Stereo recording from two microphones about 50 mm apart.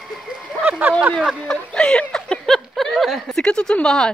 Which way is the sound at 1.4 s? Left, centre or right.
Centre.